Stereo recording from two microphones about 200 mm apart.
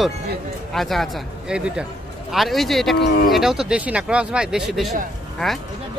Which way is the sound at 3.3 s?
Centre (ahead or behind).